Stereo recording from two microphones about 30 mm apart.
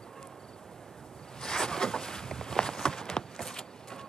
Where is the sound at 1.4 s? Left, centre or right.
Centre.